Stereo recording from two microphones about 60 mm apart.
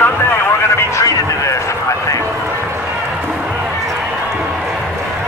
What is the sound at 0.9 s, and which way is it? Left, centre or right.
Vehicle, left.